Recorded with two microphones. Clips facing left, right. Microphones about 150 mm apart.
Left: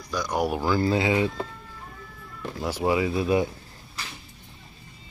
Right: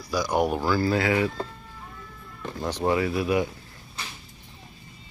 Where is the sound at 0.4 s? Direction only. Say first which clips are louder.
Right 1 dB; 5° left (ahead or behind).